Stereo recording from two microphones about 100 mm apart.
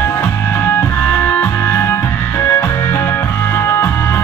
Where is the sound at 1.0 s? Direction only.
20° left (ahead or behind).